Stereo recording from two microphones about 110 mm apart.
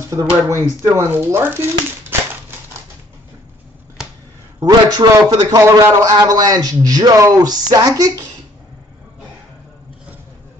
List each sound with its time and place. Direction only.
0.1 s speech: 25° right (ahead or behind)
4.6 s speech: 35° right (ahead or behind)